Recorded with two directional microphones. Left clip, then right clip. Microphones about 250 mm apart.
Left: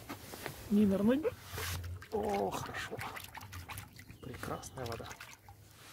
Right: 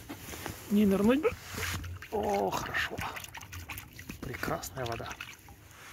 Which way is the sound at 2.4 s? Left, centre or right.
Centre.